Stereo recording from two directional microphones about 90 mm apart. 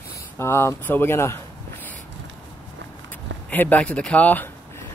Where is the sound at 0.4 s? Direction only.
30° left (ahead or behind).